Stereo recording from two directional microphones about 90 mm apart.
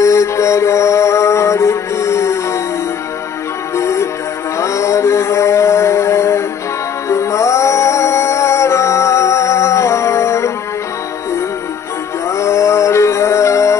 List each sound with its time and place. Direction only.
0.0 s music: 35° left (ahead or behind)
3.7 s music: 35° left (ahead or behind)
4.6 s a sound: 35° left (ahead or behind)
7.1 s music: 35° left (ahead or behind)
12.3 s music: 30° left (ahead or behind)